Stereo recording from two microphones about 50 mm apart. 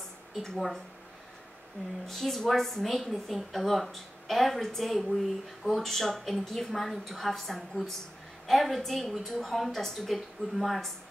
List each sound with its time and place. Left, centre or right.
0.4 s a woman's voice: centre
2.0 s a woman's voice: centre